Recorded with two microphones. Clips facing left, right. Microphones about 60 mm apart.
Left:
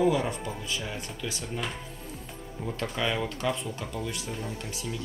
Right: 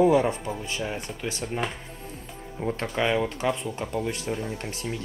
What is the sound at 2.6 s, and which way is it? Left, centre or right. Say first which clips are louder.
Speech: right 5 dB; right.